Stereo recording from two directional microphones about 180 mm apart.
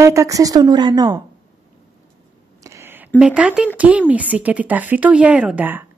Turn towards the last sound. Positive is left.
turn(degrees=-10)  # may be behind; listen again after turning